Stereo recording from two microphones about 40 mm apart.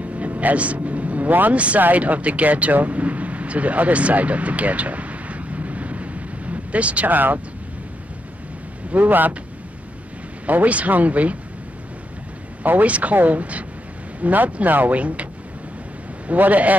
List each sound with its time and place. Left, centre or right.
0.0 s a sound: right
0.8 s vehicle: right
1.5 s speech: right
8.9 s speech: right
10.4 s speech: right
12.8 s speech: right
16.3 s speech: right